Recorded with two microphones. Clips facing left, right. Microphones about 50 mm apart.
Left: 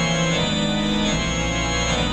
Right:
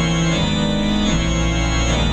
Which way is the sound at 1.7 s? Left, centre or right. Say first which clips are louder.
Right 2 dB; centre.